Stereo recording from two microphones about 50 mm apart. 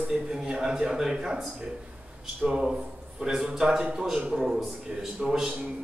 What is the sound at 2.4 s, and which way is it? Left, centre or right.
A man's voice, centre.